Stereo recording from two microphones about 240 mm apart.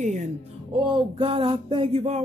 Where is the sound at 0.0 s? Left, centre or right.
Right.